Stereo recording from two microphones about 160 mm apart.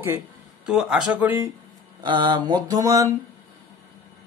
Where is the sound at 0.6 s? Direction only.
5° right (ahead or behind).